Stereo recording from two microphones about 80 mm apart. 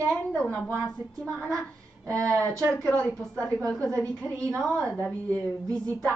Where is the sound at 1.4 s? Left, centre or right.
Centre.